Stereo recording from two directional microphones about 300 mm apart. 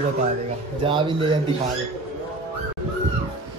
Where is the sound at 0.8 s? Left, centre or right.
Centre.